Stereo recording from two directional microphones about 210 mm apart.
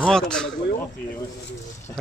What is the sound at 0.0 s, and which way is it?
Speech, 5° left (ahead or behind).